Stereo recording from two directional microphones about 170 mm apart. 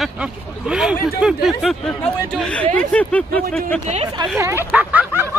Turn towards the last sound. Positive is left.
turn(degrees=-10)  # may be behind; listen again after turning